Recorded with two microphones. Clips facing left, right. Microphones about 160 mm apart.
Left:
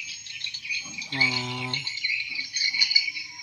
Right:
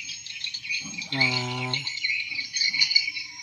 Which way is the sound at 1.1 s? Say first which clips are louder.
Right 2 dB; 25° right (ahead or behind).